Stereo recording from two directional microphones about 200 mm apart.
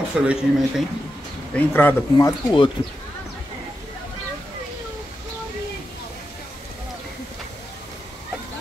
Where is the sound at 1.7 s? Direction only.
10° left (ahead or behind).